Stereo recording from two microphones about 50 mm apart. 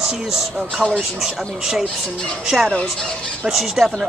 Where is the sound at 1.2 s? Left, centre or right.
Centre.